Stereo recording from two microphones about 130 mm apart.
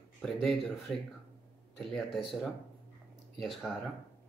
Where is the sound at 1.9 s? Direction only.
Centre (ahead or behind).